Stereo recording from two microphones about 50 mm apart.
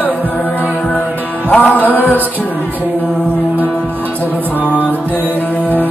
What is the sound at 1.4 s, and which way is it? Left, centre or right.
Music, left.